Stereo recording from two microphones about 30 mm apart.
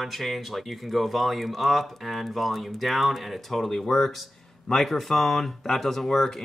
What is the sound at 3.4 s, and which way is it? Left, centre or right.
Speech, centre.